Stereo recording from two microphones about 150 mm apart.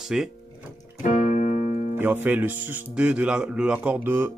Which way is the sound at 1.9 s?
10° right (ahead or behind).